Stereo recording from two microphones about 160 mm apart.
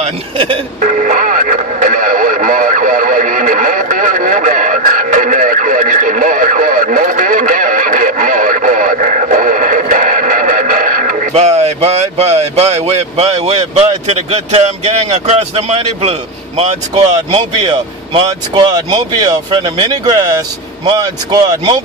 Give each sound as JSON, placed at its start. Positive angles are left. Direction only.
{"t": 0.0, "sound": "speech", "side_deg": -30}
{"t": 0.7, "sound": "speech", "side_deg": -50}
{"t": 17.3, "sound": "speech", "side_deg": -30}